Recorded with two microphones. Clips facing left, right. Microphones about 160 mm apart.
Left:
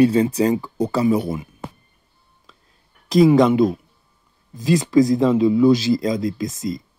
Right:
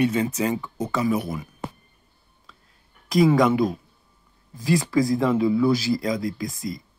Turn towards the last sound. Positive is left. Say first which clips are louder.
# left 5 dB
turn(degrees=20)  # may be behind; listen again after turning